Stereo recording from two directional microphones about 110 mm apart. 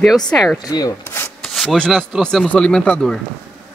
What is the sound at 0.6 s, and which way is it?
Rub, 35° left (ahead or behind).